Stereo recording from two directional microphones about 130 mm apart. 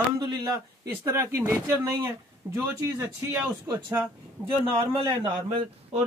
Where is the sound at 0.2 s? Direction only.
30° right (ahead or behind).